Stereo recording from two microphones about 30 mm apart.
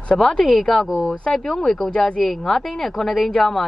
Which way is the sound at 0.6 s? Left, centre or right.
Centre.